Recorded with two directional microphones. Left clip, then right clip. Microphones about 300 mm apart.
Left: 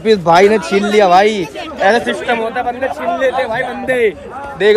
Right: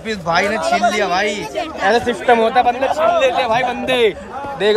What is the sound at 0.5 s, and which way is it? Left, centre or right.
Speech, right.